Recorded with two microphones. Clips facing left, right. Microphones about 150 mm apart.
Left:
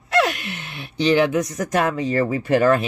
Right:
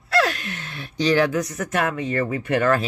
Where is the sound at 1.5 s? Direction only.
30° left (ahead or behind).